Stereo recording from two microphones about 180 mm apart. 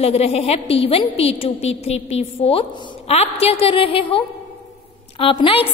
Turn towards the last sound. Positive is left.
turn(degrees=30)  # may be behind; listen again after turning